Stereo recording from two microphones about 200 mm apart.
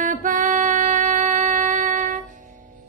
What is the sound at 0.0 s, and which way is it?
Female singing, 40° right (ahead or behind).